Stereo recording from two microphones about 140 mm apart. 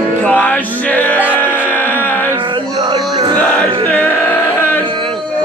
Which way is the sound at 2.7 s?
35° right (ahead or behind).